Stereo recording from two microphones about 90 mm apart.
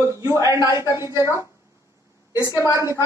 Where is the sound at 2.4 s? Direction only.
35° left (ahead or behind).